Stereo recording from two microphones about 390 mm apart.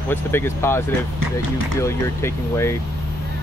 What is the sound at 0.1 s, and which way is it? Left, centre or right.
Speech, centre.